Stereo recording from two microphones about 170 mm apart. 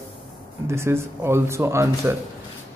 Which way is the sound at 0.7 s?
15° right (ahead or behind).